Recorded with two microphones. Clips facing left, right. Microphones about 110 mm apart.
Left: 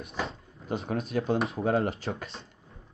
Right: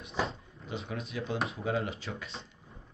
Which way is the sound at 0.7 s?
45° left (ahead or behind).